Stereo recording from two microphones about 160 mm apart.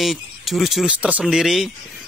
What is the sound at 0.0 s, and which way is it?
Speech, centre (ahead or behind).